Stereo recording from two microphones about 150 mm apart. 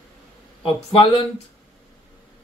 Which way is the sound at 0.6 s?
35° left (ahead or behind).